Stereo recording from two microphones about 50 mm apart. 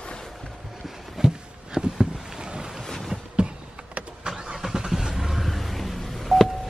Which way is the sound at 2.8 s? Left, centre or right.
Centre.